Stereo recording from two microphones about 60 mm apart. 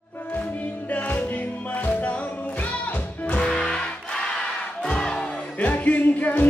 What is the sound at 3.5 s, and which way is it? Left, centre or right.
Music, centre.